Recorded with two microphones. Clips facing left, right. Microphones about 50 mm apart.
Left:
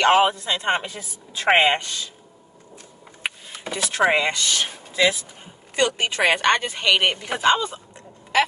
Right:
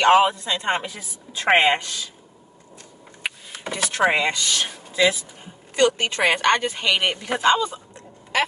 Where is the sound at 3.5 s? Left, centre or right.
Centre.